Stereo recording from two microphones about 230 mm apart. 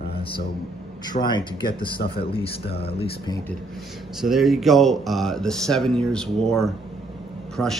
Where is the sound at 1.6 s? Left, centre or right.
Left.